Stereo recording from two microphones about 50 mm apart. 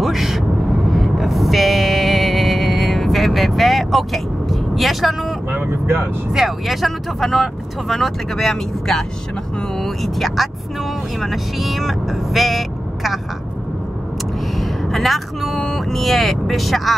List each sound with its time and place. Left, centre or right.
0.0 s vehicle: centre
0.9 s a sound: centre
5.5 s speech: right
6.3 s speech: centre
14.5 s speech: centre